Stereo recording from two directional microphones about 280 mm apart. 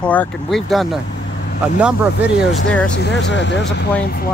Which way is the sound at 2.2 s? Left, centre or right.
Centre.